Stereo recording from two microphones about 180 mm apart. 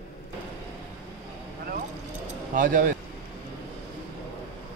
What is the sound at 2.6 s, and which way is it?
Speech, 50° right (ahead or behind).